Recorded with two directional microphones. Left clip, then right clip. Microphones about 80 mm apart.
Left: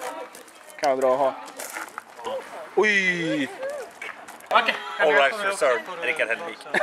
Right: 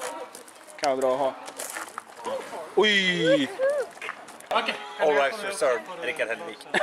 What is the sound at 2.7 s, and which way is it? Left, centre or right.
Speech, left.